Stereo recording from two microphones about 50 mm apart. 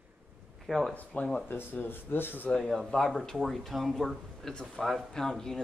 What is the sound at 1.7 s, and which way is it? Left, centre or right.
Speech, left.